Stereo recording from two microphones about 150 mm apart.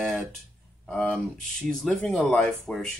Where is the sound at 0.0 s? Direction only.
Centre (ahead or behind).